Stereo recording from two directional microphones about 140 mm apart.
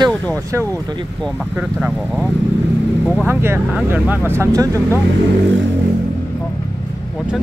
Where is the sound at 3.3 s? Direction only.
15° right (ahead or behind).